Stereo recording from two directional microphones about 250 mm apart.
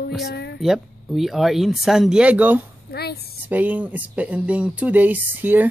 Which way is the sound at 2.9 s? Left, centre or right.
Left.